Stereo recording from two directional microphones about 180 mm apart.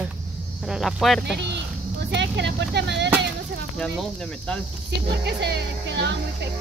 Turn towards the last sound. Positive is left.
turn(degrees=-70)  # may be behind; listen again after turning